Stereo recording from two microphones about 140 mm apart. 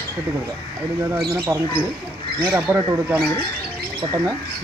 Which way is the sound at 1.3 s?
15° right (ahead or behind).